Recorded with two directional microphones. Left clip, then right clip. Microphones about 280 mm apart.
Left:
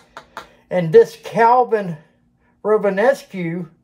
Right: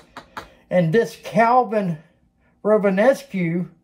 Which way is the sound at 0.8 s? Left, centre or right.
Centre.